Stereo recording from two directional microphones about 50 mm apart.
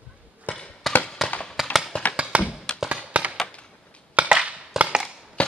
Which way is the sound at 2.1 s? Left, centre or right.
Right.